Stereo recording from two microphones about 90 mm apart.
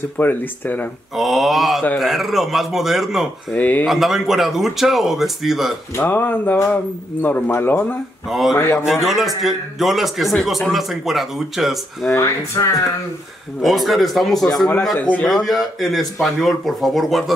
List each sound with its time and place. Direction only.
0.2 s speech: 20° left (ahead or behind)
1.1 s speech: centre (ahead or behind)
3.5 s speech: 20° left (ahead or behind)
3.8 s speech: centre (ahead or behind)
5.9 s speech: 25° left (ahead or behind)
8.3 s speech: centre (ahead or behind)
8.5 s speech: 30° left (ahead or behind)
9.0 s speech: centre (ahead or behind)
12.1 s speech: 30° left (ahead or behind)
13.6 s speech: centre (ahead or behind)
15.0 s speech: 20° left (ahead or behind)
15.2 s speech: centre (ahead or behind)